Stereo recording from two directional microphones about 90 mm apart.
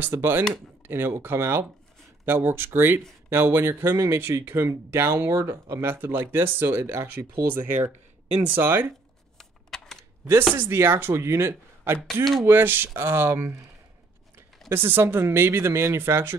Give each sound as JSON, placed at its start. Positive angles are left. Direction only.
{"t": 0.0, "sound": "speech", "side_deg": -25}
{"t": 9.4, "sound": "typing", "side_deg": 5}
{"t": 10.5, "sound": "speech", "side_deg": -25}
{"t": 14.7, "sound": "speech", "side_deg": -25}